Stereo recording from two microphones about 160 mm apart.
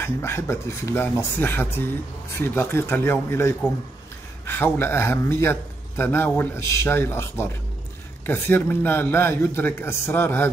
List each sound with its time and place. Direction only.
0.0 s a man's voice: 15° left (ahead or behind)